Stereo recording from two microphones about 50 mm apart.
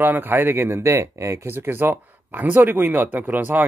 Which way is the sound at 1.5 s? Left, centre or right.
Right.